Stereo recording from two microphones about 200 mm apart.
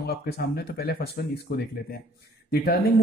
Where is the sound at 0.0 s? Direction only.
50° left (ahead or behind).